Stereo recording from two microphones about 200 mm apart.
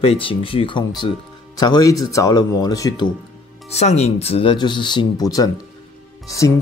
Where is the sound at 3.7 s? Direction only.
30° left (ahead or behind).